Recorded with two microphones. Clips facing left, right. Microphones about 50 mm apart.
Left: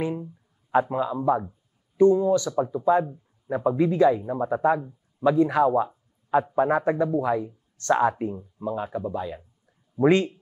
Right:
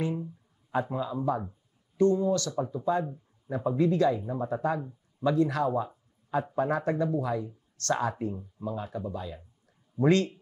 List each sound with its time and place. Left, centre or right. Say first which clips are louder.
0.0 s a sound: left 3 dB; centre
0.8 s speech: left 6 dB; left
9.9 s speech: left 4 dB; centre